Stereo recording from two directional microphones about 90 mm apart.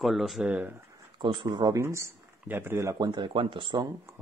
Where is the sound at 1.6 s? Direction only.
35° right (ahead or behind).